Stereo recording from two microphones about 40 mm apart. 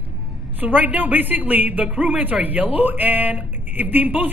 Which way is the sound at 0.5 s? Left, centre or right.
Right.